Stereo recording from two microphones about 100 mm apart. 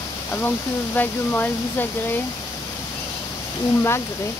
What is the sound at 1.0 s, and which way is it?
Speech, 20° left (ahead or behind).